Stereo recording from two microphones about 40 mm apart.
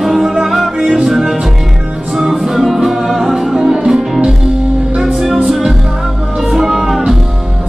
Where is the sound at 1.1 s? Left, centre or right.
Centre.